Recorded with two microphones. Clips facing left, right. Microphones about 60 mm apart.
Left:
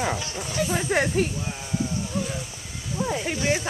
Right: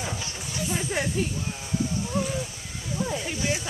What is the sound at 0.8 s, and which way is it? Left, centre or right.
Speech, left.